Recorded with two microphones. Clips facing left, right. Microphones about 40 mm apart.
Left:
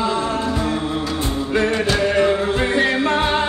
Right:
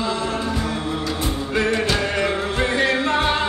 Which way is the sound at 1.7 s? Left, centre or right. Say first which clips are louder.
Left 3 dB; centre.